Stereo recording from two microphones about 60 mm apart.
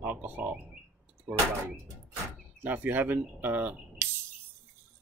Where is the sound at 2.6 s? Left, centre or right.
Right.